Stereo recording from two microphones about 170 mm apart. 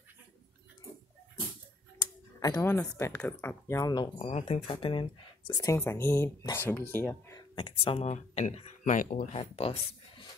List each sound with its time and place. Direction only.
2.5 s speech: 10° left (ahead or behind)
7.5 s speech: 35° left (ahead or behind); by 9.3 s 55° left (ahead or behind)
9.3 s speech: 35° left (ahead or behind)